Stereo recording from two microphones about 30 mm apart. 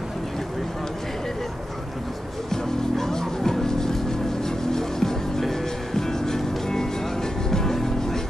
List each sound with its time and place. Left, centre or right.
2.5 s music: centre